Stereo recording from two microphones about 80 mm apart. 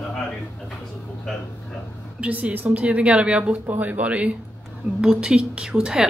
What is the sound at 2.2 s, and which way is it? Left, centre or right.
Speech, centre.